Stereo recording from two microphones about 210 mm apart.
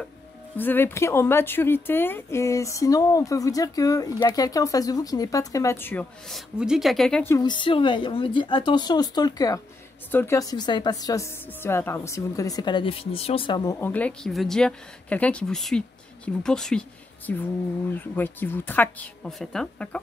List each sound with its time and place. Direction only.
0.6 s speech: 10° left (ahead or behind)
7.3 s speech: 20° left (ahead or behind)
13.7 s speech: 10° left (ahead or behind)